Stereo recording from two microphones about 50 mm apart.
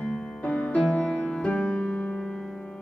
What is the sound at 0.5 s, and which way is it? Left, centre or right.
Music, left.